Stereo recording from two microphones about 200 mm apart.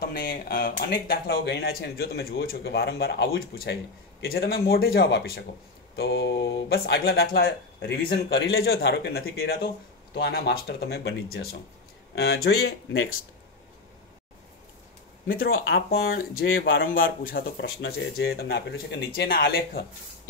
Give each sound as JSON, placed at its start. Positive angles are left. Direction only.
{"t": 0.0, "sound": "speech", "side_deg": 50}
{"t": 15.2, "sound": "speech", "side_deg": 45}
{"t": 16.8, "sound": "speech", "side_deg": 45}